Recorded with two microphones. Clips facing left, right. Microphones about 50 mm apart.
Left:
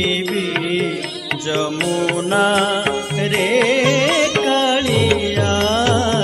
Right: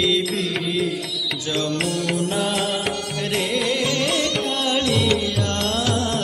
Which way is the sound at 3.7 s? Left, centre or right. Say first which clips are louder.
Left 7 dB; left.